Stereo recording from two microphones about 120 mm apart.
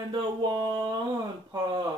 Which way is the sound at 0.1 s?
35° right (ahead or behind).